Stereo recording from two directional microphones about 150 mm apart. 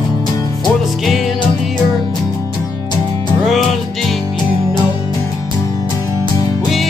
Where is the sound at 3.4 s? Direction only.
Centre (ahead or behind).